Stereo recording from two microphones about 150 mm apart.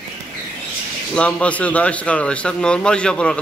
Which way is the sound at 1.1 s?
10° left (ahead or behind).